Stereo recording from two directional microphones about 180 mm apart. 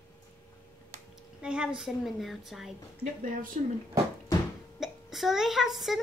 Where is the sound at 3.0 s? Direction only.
50° right (ahead or behind).